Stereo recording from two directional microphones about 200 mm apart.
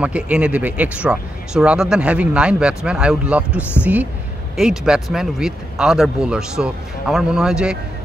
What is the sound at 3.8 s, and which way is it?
Speech, 55° right (ahead or behind).